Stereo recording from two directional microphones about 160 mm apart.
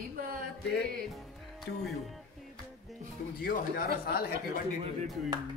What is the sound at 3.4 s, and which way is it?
Speech, 70° left (ahead or behind).